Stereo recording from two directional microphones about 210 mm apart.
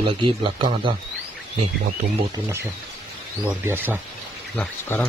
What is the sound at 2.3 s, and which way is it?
Speech, 10° right (ahead or behind).